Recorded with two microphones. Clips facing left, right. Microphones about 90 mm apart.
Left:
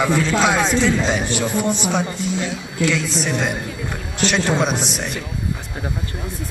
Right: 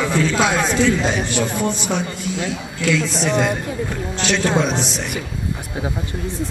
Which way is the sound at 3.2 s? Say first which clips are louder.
Right 4 dB; 25° right (ahead or behind).